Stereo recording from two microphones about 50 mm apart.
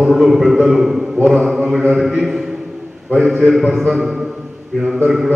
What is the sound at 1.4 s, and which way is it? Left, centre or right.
Mantra, centre.